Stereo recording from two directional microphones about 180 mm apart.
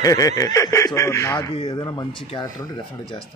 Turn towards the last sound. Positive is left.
turn(degrees=25)  # may be behind; listen again after turning